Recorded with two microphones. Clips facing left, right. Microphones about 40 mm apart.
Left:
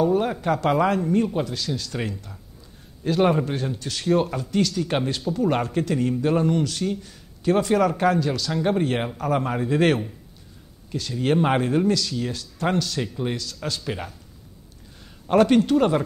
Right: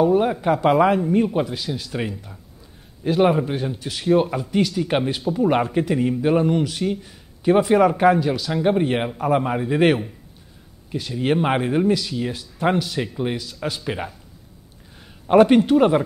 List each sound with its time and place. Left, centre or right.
0.0 s speech: centre
15.2 s speech: centre